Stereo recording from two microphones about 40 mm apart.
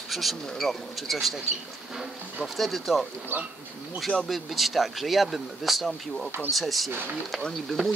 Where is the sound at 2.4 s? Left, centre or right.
Centre.